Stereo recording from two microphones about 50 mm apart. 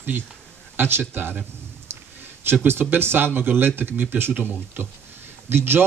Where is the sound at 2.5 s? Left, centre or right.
Right.